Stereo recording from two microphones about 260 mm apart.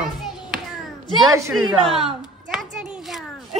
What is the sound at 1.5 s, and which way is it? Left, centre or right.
Speech, centre.